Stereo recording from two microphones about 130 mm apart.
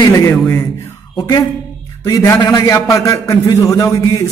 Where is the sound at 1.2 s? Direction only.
25° left (ahead or behind).